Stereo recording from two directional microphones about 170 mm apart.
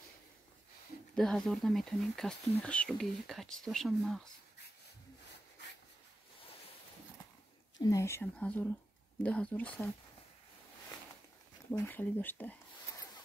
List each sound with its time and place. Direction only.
1.1 s speech: centre (ahead or behind)
7.8 s speech: 15° left (ahead or behind)
11.7 s speech: 15° left (ahead or behind)